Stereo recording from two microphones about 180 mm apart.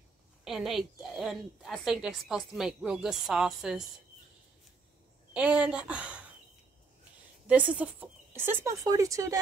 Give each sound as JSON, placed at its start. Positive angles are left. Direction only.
{"t": 0.5, "sound": "a woman's voice", "side_deg": 0}
{"t": 5.3, "sound": "speech", "side_deg": -5}
{"t": 7.4, "sound": "speech", "side_deg": -5}